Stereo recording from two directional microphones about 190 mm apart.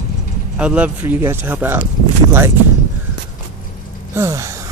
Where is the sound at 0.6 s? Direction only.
5° right (ahead or behind).